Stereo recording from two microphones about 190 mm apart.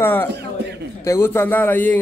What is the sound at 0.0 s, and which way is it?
A man's voice, 10° left (ahead or behind).